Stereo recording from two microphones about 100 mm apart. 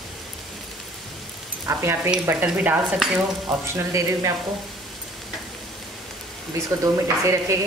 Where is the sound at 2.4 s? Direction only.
15° right (ahead or behind).